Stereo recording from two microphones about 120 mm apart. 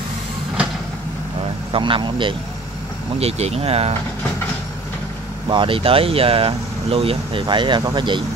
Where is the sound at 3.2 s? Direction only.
60° right (ahead or behind).